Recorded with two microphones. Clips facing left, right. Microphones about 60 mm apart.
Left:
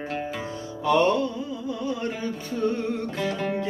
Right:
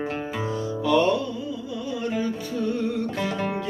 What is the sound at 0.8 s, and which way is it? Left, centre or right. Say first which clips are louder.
Music: even; left.